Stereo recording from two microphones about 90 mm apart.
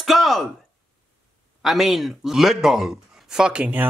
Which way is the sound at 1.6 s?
Centre (ahead or behind).